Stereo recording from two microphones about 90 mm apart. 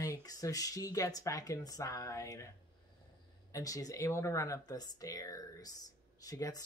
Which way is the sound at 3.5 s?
40° left (ahead or behind).